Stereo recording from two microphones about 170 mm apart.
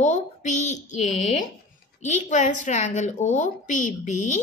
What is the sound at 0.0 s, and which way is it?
Speech, 45° left (ahead or behind).